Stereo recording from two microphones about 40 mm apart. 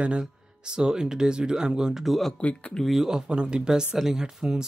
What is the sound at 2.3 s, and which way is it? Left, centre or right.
Speech, left.